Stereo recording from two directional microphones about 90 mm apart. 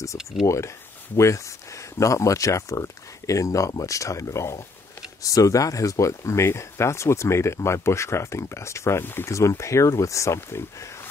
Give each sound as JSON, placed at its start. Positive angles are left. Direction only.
{"t": 0.2, "sound": "speech", "side_deg": -5}
{"t": 1.1, "sound": "speech", "side_deg": 35}